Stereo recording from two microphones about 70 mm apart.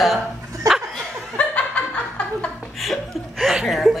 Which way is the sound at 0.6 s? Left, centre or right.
Right.